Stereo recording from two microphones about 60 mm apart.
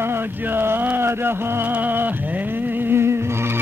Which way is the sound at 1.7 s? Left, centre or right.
Right.